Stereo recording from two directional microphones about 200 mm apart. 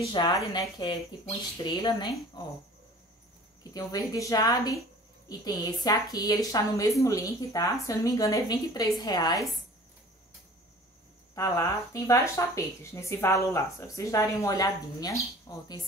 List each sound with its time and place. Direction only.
0.1 s speech: 20° left (ahead or behind)
3.7 s speech: 20° left (ahead or behind)
11.3 s speech: 15° left (ahead or behind)